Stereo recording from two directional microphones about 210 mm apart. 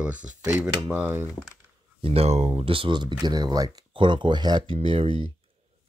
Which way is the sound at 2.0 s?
30° right (ahead or behind).